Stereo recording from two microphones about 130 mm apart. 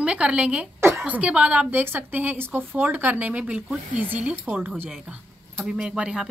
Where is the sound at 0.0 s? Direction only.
5° right (ahead or behind).